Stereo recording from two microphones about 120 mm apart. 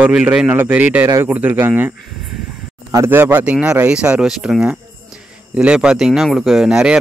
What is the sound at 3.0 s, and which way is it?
Speech, 20° right (ahead or behind).